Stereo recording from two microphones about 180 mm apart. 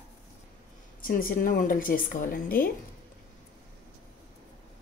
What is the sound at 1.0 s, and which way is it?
A woman's voice, 50° left (ahead or behind).